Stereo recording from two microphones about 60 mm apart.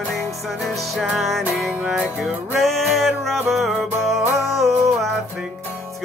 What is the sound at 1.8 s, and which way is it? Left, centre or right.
Music, centre.